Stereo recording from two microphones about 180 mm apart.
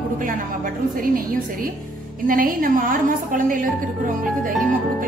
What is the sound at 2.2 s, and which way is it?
A woman's voice, 50° right (ahead or behind).